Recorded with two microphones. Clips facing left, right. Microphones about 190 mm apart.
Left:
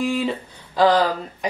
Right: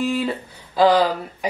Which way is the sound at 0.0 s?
Centre (ahead or behind).